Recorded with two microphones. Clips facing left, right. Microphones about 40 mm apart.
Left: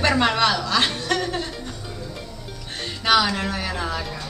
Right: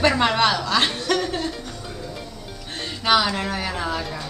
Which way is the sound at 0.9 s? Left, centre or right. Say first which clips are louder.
Right 1 dB; centre.